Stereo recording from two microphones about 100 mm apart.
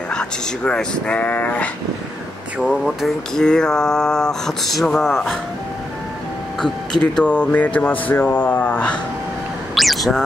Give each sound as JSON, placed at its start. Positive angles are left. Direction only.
{"t": 0.1, "sound": "speech", "side_deg": 10}
{"t": 2.6, "sound": "speech", "side_deg": -5}
{"t": 7.0, "sound": "speech", "side_deg": 15}
{"t": 9.8, "sound": "a sound", "side_deg": 0}